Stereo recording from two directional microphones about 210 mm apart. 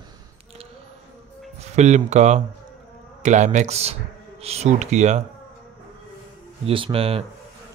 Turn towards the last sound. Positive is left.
turn(degrees=-25)  # may be behind; listen again after turning